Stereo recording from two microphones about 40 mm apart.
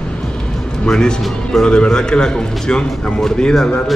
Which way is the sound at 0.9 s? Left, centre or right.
Centre.